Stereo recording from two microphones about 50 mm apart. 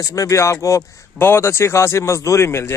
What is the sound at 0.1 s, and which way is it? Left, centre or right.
Speech, left.